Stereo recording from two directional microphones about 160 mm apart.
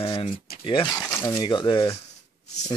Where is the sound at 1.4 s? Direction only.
30° left (ahead or behind).